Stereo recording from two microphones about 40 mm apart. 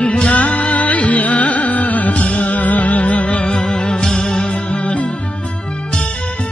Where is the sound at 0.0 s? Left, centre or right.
Left.